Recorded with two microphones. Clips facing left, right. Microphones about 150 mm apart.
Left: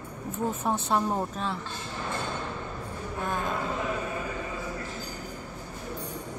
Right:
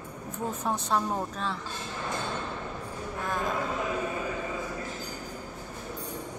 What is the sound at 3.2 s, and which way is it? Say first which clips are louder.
Speech: even; centre (ahead or behind).